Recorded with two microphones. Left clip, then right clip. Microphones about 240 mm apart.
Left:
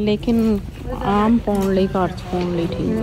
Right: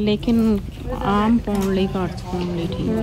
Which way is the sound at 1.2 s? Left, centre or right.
Centre.